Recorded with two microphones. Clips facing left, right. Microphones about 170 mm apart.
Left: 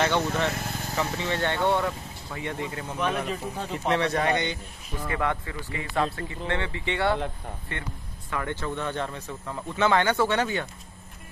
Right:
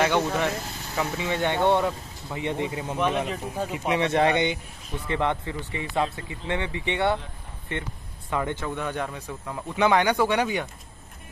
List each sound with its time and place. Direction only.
0.0 s speech: 10° right (ahead or behind)
4.1 s speech: 25° right (ahead or behind)
8.3 s speech: 20° right (ahead or behind)